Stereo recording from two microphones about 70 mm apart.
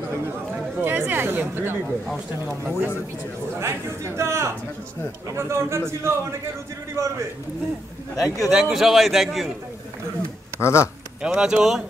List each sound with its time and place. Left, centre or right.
0.7 s speech: right
3.5 s a man's voice: right
8.2 s a man's voice: centre
10.6 s speech: left
11.2 s speech: centre